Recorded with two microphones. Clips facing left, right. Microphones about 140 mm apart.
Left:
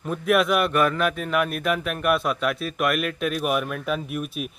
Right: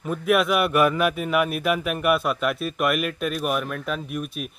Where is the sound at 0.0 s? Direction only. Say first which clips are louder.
Even; centre (ahead or behind).